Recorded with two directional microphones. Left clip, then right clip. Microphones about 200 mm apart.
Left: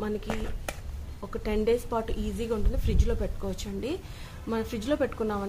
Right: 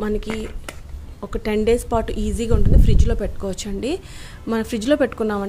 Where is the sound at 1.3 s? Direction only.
40° right (ahead or behind).